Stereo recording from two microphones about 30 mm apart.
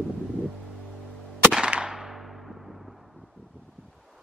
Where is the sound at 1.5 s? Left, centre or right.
Right.